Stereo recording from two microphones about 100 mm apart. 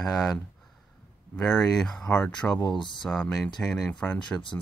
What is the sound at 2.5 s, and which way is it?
Speech, 45° left (ahead or behind).